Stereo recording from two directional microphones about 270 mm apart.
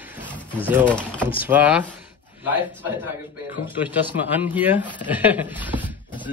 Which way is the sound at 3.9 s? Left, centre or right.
Centre.